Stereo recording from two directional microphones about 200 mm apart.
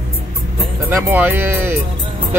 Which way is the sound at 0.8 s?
10° right (ahead or behind).